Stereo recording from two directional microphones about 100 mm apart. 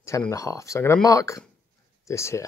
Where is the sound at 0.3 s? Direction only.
30° left (ahead or behind).